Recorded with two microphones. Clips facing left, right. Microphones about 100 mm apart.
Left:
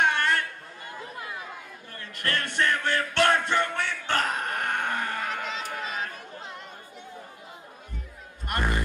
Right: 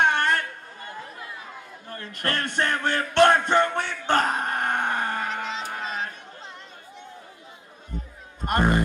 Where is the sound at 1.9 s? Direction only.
40° right (ahead or behind).